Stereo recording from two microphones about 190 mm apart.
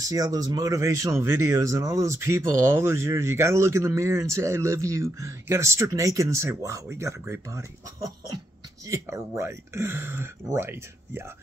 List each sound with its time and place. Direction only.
0.1 s speech: 20° right (ahead or behind)